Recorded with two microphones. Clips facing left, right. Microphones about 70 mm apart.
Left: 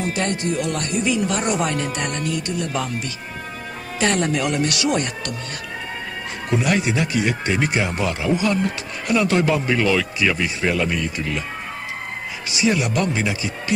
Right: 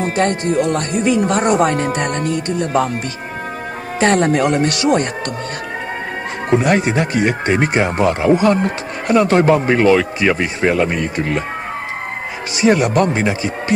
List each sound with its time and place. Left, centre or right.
0.0 s speech: right
4.0 s speech: right
6.5 s speech: right
12.5 s speech: right